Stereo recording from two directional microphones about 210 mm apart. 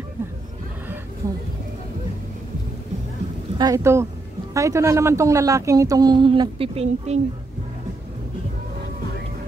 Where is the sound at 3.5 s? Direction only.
15° right (ahead or behind).